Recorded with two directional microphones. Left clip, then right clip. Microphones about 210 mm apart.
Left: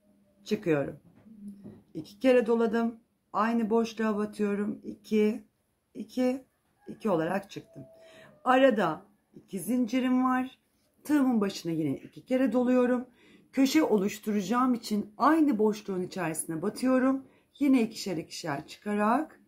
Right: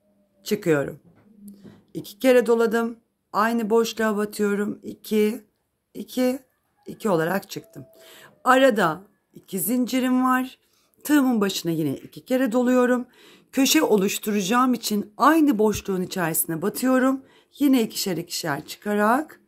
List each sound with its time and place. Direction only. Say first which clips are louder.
0.4 s speech: right 6 dB; 55° right (ahead or behind)